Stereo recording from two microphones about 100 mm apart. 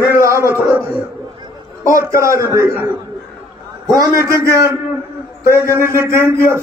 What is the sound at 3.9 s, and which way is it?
Speech, 30° right (ahead or behind).